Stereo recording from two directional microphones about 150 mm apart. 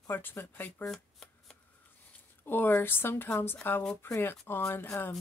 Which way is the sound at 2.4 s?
15° left (ahead or behind).